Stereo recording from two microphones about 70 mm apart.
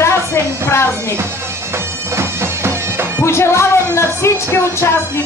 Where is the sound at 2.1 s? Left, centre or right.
Right.